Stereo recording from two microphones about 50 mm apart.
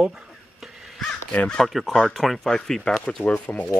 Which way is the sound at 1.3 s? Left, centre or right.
Left.